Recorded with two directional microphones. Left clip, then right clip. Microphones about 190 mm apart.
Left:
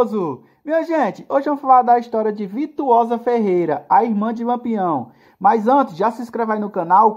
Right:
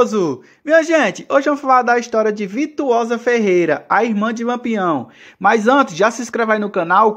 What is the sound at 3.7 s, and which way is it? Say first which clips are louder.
Speech: even; 15° right (ahead or behind).